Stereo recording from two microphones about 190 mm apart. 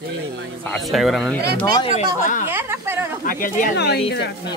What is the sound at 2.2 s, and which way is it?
Speech, 45° left (ahead or behind).